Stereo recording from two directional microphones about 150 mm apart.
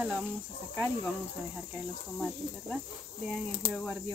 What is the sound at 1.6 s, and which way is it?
Speech, centre (ahead or behind).